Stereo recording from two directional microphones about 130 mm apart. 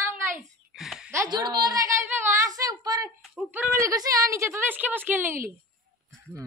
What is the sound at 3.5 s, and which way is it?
A woman's voice, 25° right (ahead or behind).